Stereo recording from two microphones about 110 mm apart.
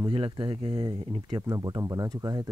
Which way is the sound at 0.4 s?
45° right (ahead or behind).